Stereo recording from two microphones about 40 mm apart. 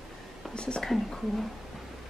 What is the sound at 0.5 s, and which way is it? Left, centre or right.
Whispering, left.